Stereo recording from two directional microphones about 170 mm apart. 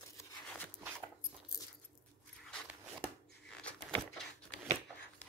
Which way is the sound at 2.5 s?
5° left (ahead or behind).